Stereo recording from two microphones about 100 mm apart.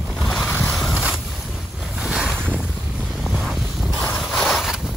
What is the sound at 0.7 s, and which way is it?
Boat, centre (ahead or behind).